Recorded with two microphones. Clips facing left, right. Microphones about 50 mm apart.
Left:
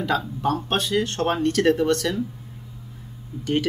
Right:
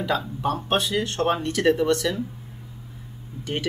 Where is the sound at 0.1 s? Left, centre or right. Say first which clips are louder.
Left 2 dB; centre.